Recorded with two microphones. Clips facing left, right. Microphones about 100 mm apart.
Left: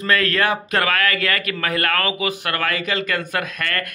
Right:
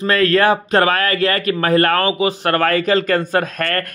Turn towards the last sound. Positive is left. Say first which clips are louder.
# right 6 dB
turn(degrees=-40)  # may be behind; listen again after turning